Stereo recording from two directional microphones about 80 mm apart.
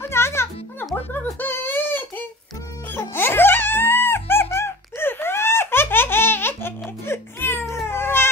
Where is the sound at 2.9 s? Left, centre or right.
Left.